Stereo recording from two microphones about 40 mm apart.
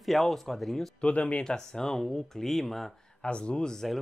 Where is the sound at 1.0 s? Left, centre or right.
Left.